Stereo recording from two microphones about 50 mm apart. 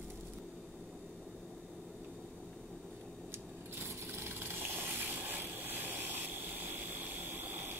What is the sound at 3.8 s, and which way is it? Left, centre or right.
Rub, right.